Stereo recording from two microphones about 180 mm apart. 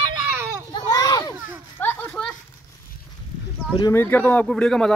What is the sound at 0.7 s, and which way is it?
Children playing, 20° left (ahead or behind).